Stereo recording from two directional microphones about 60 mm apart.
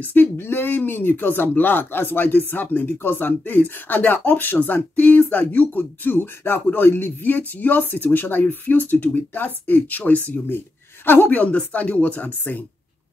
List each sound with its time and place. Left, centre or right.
0.0 s speech: left